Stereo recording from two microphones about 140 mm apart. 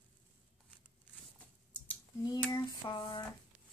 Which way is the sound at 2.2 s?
30° left (ahead or behind).